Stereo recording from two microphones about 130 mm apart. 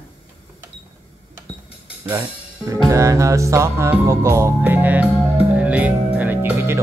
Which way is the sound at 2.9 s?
25° right (ahead or behind).